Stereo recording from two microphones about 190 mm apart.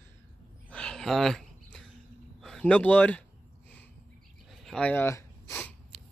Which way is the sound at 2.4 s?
Centre (ahead or behind).